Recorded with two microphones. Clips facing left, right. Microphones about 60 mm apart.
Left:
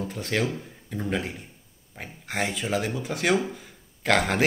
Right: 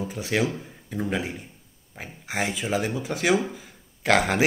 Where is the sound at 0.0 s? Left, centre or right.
Centre.